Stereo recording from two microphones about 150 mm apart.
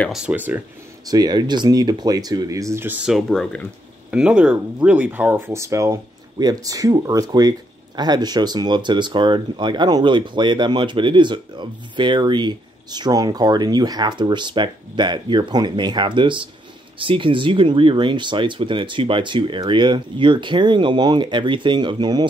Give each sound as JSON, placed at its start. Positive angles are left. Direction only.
{"t": 0.1, "sound": "speech", "side_deg": -5}
{"t": 1.0, "sound": "speech", "side_deg": -25}
{"t": 3.1, "sound": "speech", "side_deg": 0}